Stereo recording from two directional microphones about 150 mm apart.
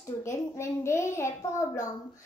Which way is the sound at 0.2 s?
20° left (ahead or behind).